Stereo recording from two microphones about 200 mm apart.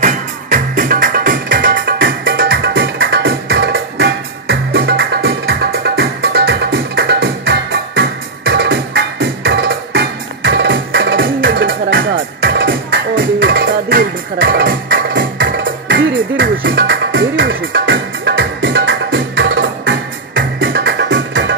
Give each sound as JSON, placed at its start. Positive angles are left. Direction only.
{"t": 0.0, "sound": "music", "side_deg": -40}
{"t": 12.5, "sound": "music", "side_deg": -55}